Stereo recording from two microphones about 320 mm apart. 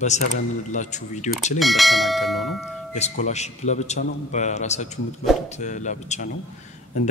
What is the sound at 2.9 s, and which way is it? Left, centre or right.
Speech, left.